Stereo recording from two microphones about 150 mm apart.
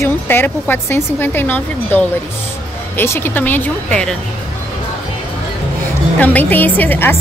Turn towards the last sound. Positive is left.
turn(degrees=15)  # may be behind; listen again after turning